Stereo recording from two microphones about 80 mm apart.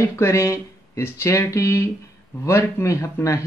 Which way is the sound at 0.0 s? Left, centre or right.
Left.